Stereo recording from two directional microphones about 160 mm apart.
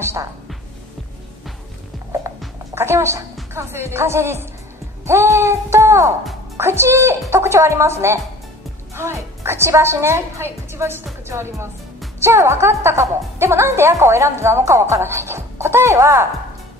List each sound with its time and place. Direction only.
2.7 s a woman's voice: 15° right (ahead or behind)